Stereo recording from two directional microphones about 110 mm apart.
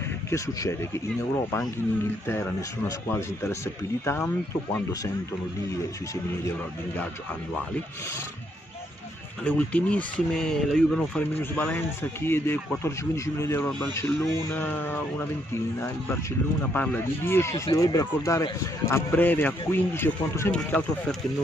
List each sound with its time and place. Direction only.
0.3 s speech: 25° left (ahead or behind)
3.1 s speech: 25° left (ahead or behind)
9.4 s speech: 10° left (ahead or behind)
11.5 s speech: 20° left (ahead or behind)
16.7 s speech: 20° left (ahead or behind)